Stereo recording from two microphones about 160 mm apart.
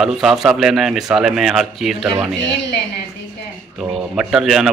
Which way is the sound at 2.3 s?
90° left.